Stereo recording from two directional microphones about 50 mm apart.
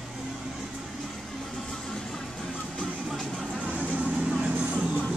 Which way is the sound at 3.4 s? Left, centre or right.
Right.